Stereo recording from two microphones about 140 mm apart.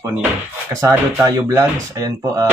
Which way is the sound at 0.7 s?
20° right (ahead or behind).